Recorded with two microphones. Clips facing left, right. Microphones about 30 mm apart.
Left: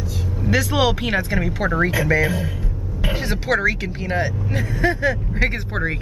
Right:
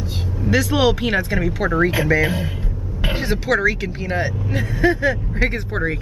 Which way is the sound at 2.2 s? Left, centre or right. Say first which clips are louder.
Right 1 dB; right.